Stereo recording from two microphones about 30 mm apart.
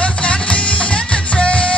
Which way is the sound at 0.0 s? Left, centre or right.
Left.